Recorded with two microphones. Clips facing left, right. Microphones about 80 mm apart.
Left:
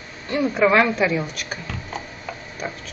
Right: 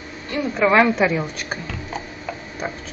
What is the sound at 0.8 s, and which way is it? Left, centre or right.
Speech, centre.